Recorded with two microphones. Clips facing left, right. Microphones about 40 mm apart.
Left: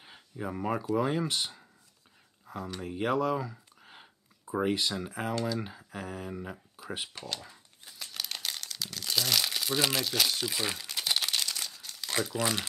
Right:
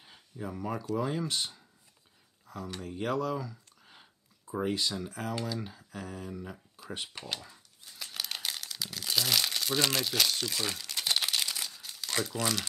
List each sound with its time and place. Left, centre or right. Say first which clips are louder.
0.0 s speech: left 3 dB; left
2.4 s a sound: left 2 dB; centre
2.8 s speech: left 3 dB; left
7.3 s a sound: left 1 dB; left
8.0 s crumpling: even; centre
12.1 s speech: left 2 dB; centre